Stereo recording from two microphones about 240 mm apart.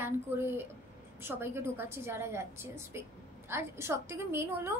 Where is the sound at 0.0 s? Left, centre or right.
Centre.